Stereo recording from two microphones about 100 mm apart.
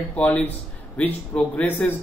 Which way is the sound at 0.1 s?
15° left (ahead or behind).